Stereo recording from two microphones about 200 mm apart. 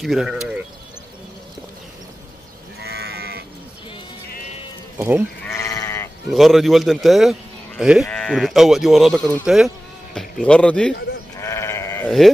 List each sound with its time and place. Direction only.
0.0 s speech: centre (ahead or behind)
2.8 s livestock: 55° right (ahead or behind)
4.9 s speech: 10° right (ahead or behind)
5.4 s sheep: 15° left (ahead or behind)
6.2 s speech: centre (ahead or behind)
11.3 s sheep: 15° left (ahead or behind)